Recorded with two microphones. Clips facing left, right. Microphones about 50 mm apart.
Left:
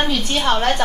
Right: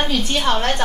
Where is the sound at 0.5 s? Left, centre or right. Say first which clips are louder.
Left 4 dB; centre.